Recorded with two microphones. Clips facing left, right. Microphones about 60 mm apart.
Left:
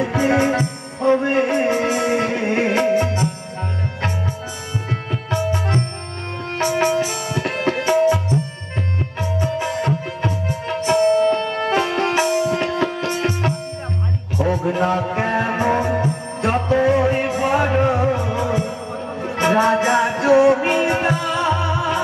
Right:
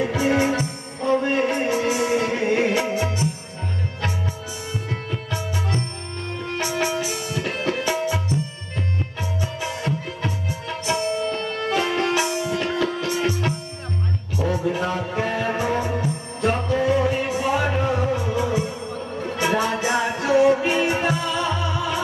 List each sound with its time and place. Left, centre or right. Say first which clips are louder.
0.1 s music: left 3 dB; left
1.7 s music: left 2 dB; left
2.7 s music: left 5 dB; left
5.3 s music: left 7 dB; left
7.4 s tabla: left 4 dB; left
9.4 s music: left 7 dB; left
14.6 s music: left 5 dB; left
17.1 s music: left 4 dB; left
17.6 s music: left 5 dB; left
18.1 s music: left 2 dB; left
20.2 s music: left 3 dB; left
20.6 s music: left 3 dB; left
21.4 s music: left 4 dB; left